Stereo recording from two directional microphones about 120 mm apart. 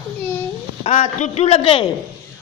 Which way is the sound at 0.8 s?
65° left (ahead or behind).